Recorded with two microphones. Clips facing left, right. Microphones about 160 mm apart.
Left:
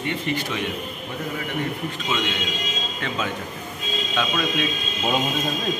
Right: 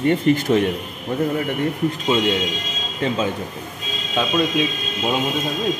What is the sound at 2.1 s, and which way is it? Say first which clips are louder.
Speech: right 7 dB; 35° right (ahead or behind).